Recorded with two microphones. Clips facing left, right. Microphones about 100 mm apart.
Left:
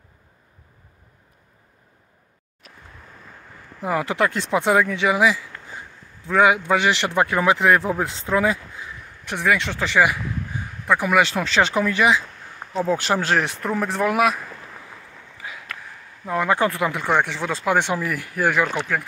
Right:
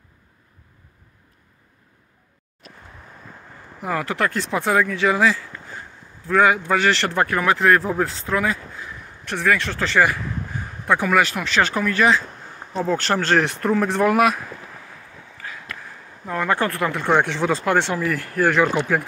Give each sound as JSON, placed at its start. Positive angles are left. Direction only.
{"t": 3.8, "sound": "speech", "side_deg": 20}
{"t": 11.1, "sound": "speech", "side_deg": 20}
{"t": 11.7, "sound": "speech", "side_deg": 20}
{"t": 15.4, "sound": "a sound", "side_deg": 15}
{"t": 16.3, "sound": "speech", "side_deg": 15}
{"t": 17.1, "sound": "speech", "side_deg": 0}
{"t": 17.7, "sound": "speech", "side_deg": 15}
{"t": 18.8, "sound": "speech", "side_deg": -10}